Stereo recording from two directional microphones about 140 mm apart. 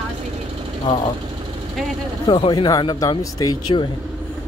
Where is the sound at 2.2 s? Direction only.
30° left (ahead or behind).